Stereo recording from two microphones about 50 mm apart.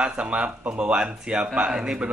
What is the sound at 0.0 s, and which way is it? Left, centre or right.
A man's voice, right.